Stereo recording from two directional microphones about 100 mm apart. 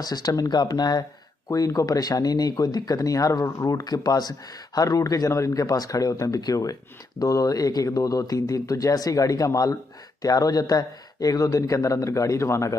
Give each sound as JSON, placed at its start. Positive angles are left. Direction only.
{"t": 0.0, "sound": "speech", "side_deg": 40}